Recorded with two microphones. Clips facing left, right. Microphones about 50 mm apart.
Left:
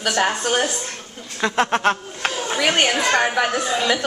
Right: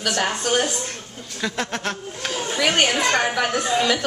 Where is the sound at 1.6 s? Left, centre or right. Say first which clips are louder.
Left 12 dB; left.